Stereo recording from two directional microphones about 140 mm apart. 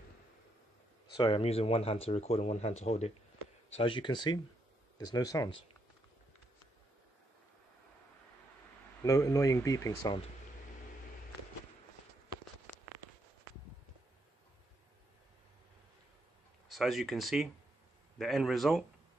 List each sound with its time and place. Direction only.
1.1 s speech: 35° left (ahead or behind)
3.7 s speech: 40° left (ahead or behind)
9.0 s speech: 25° left (ahead or behind)
16.6 s a man's voice: centre (ahead or behind)